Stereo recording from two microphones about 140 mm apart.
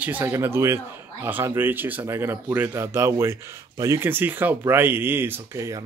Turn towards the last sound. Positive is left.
turn(degrees=-20)  # may be behind; listen again after turning